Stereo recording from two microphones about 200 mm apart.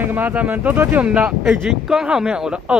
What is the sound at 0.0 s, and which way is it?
Speech, 10° right (ahead or behind).